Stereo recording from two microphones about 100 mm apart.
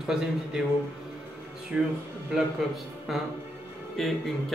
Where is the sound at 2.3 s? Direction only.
Centre (ahead or behind).